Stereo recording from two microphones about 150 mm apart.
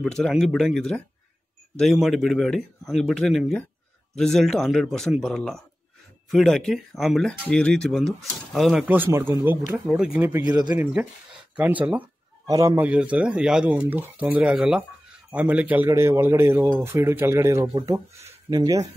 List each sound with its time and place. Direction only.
0.0 s speech: centre (ahead or behind); by 18.9 s 25° right (ahead or behind)